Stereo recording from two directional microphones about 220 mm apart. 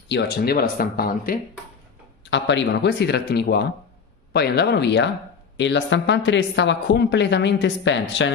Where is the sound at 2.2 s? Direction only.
55° left (ahead or behind).